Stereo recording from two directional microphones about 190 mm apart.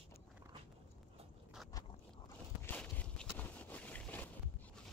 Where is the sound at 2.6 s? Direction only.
5° left (ahead or behind).